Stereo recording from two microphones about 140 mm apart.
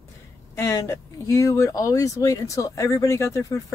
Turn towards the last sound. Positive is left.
turn(degrees=20)  # may be behind; listen again after turning